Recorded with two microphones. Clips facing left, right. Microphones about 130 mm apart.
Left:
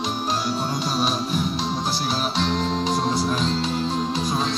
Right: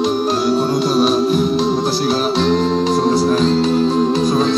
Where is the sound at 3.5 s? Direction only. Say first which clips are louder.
Right 10 dB; 65° right (ahead or behind).